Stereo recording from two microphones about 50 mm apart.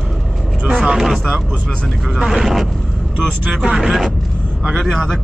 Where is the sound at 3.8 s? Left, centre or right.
Centre.